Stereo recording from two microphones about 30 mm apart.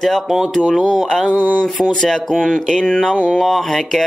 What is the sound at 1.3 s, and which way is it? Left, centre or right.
Speech, right.